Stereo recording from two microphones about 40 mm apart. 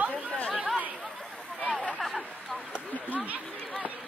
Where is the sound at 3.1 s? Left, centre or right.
Right.